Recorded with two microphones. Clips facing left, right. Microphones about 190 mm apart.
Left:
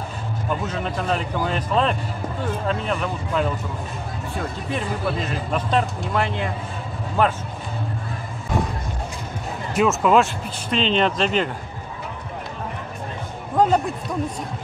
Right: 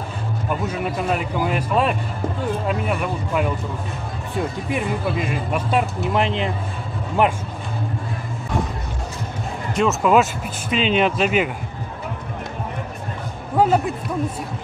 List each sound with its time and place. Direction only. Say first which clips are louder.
0.7 s speech: right 3 dB; 10° right (ahead or behind)
4.7 s speech: right 1 dB; 10° right (ahead or behind)
9.8 s speech: even; centre (ahead or behind)
13.6 s speech: right 1 dB; 10° right (ahead or behind)